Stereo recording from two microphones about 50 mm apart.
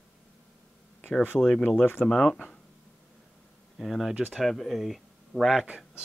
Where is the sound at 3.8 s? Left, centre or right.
Centre.